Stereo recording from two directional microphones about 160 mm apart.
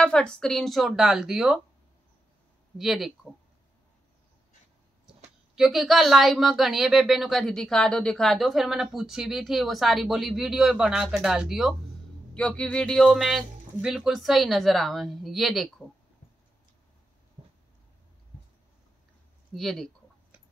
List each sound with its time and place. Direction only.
0.0 s speech: 5° left (ahead or behind)
2.8 s speech: centre (ahead or behind)
5.6 s speech: centre (ahead or behind)
17.4 s a sound: 30° right (ahead or behind)
19.5 s speech: centre (ahead or behind)